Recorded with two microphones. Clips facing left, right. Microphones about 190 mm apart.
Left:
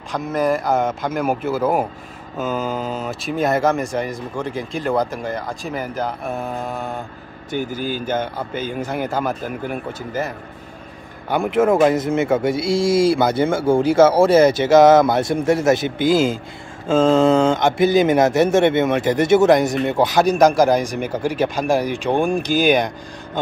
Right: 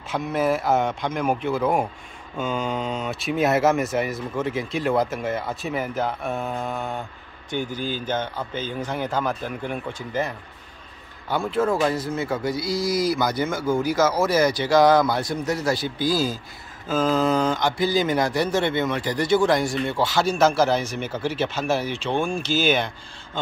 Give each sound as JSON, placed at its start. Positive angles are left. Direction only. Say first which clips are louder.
{"t": 0.1, "sound": "speech", "louder": "left 3 dB", "side_deg": 0}
{"t": 7.5, "sound": "a man's voice", "louder": "left 4 dB", "side_deg": 10}
{"t": 11.9, "sound": "speech", "louder": "left 8 dB", "side_deg": 25}